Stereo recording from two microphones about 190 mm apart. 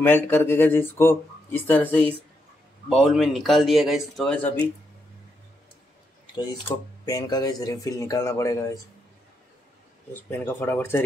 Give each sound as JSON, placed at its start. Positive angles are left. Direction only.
{"t": 0.0, "sound": "speech", "side_deg": 10}
{"t": 7.1, "sound": "speech", "side_deg": 20}
{"t": 10.3, "sound": "speech", "side_deg": 10}